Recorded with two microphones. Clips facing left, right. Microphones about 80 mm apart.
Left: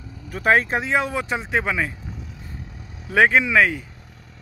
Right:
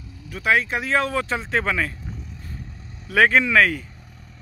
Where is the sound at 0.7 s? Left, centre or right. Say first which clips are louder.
Even; centre.